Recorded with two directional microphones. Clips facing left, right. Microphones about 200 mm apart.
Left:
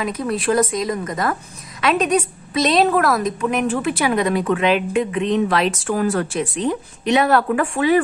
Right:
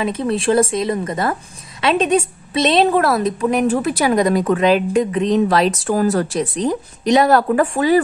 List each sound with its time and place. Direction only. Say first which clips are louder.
0.0 s a woman's voice: right 3 dB; 25° right (ahead or behind)